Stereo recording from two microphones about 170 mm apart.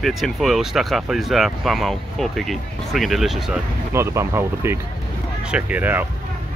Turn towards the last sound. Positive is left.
turn(degrees=-10)  # may be behind; listen again after turning